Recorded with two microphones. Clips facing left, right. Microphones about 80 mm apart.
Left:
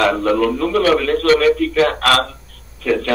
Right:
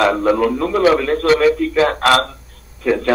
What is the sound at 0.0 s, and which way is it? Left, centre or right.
A man's voice, centre.